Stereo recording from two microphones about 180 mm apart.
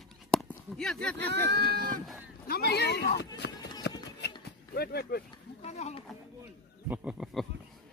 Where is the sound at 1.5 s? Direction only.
60° right (ahead or behind).